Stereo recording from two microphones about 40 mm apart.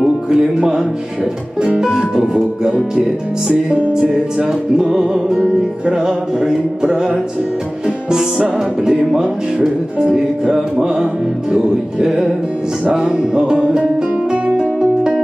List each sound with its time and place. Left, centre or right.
0.3 s music: centre